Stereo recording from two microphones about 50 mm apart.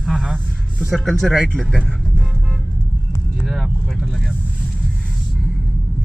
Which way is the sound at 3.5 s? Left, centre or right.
Centre.